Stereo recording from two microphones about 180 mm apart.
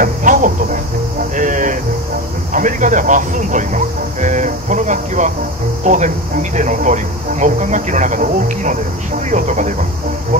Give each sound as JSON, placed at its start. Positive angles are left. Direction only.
{"t": 0.0, "sound": "speech", "side_deg": -45}
{"t": 1.3, "sound": "a sound", "side_deg": -45}
{"t": 2.5, "sound": "speech", "side_deg": -45}